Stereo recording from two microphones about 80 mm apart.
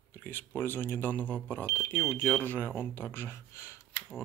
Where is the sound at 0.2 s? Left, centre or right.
Left.